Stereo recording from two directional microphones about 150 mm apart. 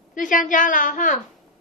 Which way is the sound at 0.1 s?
60° left (ahead or behind).